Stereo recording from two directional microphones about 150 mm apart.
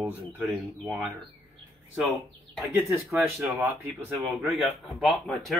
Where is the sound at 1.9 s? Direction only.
Centre (ahead or behind).